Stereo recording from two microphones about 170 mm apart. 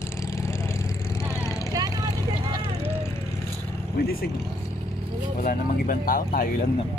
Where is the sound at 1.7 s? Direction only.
25° right (ahead or behind).